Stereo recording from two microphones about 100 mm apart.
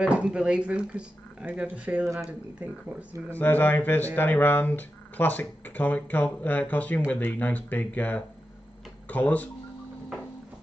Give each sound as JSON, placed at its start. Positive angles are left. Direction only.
{"t": 0.0, "sound": "speech", "side_deg": -10}
{"t": 3.3, "sound": "speech", "side_deg": 15}